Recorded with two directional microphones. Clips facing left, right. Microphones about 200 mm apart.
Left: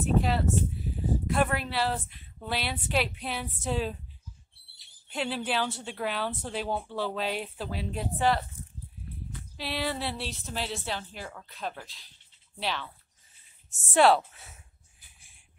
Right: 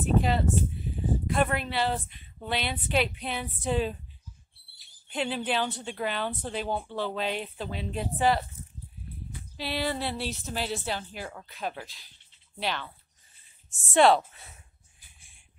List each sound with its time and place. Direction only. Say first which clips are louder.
0.0 s speech: right 1 dB; centre (ahead or behind)
5.1 s speech: right 1 dB; centre (ahead or behind)
9.6 s speech: right 2 dB; centre (ahead or behind)
13.9 s speech: right 1 dB; 5° left (ahead or behind)